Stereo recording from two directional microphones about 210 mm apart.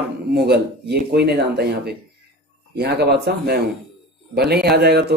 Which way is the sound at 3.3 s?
55° right (ahead or behind).